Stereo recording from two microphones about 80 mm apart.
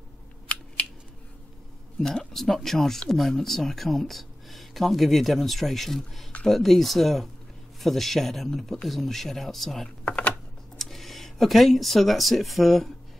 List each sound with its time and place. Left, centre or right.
0.5 s typing: centre
2.0 s speech: centre
9.8 s speech: centre
10.8 s speech: centre